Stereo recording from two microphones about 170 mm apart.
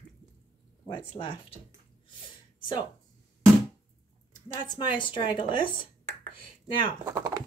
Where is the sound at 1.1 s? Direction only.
30° left (ahead or behind).